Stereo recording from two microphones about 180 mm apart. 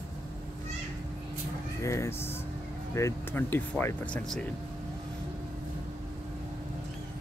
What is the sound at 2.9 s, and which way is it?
Speech, 15° left (ahead or behind).